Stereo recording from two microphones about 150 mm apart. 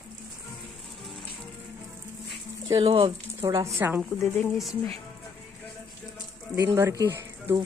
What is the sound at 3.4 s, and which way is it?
Speech, 20° right (ahead or behind).